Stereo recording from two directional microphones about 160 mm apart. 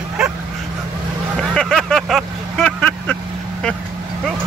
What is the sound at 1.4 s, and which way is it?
Vehicle, 5° left (ahead or behind).